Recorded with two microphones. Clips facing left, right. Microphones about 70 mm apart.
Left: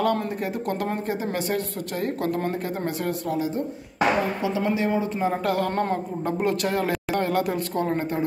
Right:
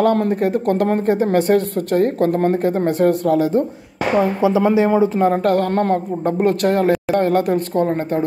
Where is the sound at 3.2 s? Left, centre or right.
Right.